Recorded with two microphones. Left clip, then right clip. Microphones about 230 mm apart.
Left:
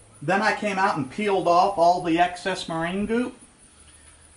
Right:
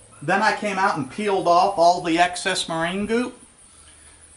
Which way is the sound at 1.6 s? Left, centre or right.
Centre.